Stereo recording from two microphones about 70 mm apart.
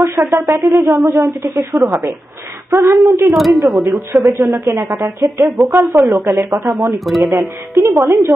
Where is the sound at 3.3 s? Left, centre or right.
Centre.